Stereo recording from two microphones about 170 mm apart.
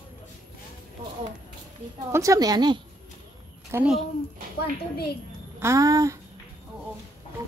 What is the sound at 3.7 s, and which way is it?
Speech, 5° right (ahead or behind).